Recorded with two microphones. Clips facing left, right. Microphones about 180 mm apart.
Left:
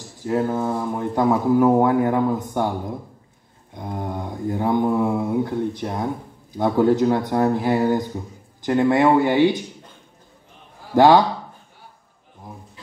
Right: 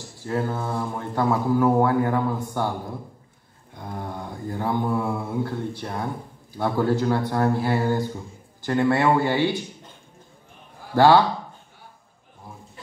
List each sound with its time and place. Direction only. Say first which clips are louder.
0.3 s speech: left 5 dB; 15° left (ahead or behind)
3.7 s mantra: left 4 dB; 20° left (ahead or behind)
6.5 s speech: left 5 dB; 20° left (ahead or behind)
11.0 s speech: left 2 dB; 15° left (ahead or behind)